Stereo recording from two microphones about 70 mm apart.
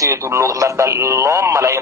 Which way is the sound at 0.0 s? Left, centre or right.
Right.